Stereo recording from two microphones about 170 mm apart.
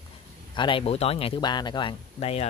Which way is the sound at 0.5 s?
30° left (ahead or behind).